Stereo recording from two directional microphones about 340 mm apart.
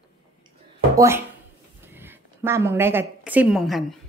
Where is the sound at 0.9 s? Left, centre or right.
Centre.